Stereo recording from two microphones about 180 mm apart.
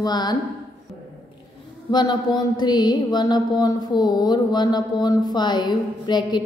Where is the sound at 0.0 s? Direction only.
25° left (ahead or behind).